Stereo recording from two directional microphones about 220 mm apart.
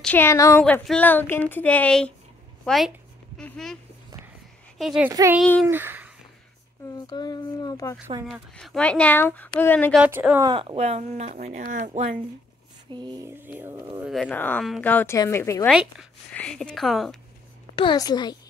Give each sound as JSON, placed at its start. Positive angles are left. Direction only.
{"t": 0.0, "sound": "speech", "side_deg": 10}
{"t": 4.7, "sound": "speech", "side_deg": 0}
{"t": 5.1, "sound": "a sound", "side_deg": -15}
{"t": 5.4, "sound": "speech", "side_deg": 0}
{"t": 5.7, "sound": "a sound", "side_deg": -10}
{"t": 7.1, "sound": "speech", "side_deg": 20}
{"t": 8.3, "sound": "speech", "side_deg": 0}
{"t": 10.0, "sound": "a sound", "side_deg": -10}
{"t": 10.5, "sound": "speech", "side_deg": -25}
{"t": 12.9, "sound": "a sound", "side_deg": -20}
{"t": 14.0, "sound": "speech", "side_deg": 0}
{"t": 15.7, "sound": "speech", "side_deg": -5}
{"t": 17.7, "sound": "speech", "side_deg": 20}